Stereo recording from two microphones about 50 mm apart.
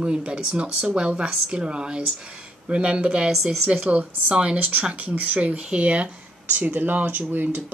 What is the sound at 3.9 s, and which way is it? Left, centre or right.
A woman's voice, right.